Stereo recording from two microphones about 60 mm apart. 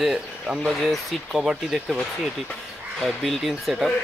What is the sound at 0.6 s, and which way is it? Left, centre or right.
Speech, centre.